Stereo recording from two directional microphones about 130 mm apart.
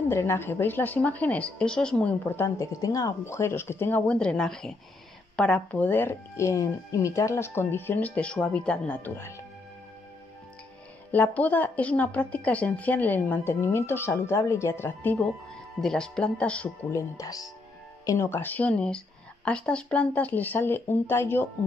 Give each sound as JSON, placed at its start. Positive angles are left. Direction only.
{"t": 0.1, "sound": "a woman's voice", "side_deg": 20}
{"t": 11.1, "sound": "a woman's voice", "side_deg": 10}
{"t": 15.8, "sound": "a woman's voice", "side_deg": 5}
{"t": 16.9, "sound": "a woman's voice", "side_deg": 30}